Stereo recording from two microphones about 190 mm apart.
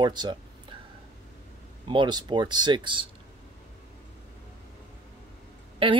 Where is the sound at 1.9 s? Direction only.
25° right (ahead or behind).